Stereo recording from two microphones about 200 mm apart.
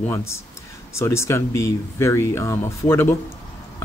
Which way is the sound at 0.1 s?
15° left (ahead or behind).